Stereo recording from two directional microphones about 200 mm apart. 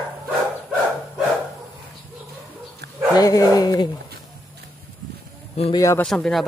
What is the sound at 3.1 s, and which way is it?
Speech, 20° left (ahead or behind).